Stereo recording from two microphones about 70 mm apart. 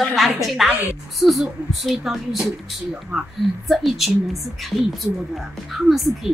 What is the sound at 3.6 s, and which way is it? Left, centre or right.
A woman's voice, centre.